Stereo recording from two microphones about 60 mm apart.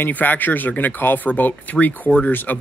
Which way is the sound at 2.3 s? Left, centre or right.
Left.